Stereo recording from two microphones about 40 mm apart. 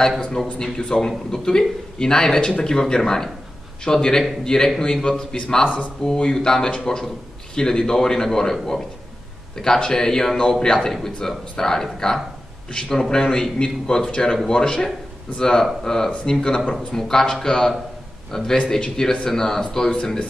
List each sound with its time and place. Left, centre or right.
0.2 s a man's voice: centre
9.8 s a man's voice: centre